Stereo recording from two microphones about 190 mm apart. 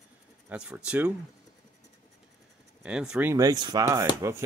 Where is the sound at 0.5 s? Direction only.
5° right (ahead or behind).